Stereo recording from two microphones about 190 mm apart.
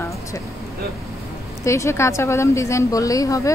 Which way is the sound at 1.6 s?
15° left (ahead or behind).